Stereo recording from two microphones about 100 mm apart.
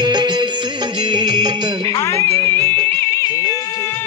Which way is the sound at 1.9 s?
30° left (ahead or behind).